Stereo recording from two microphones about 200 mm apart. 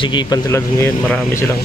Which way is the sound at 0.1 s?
20° left (ahead or behind).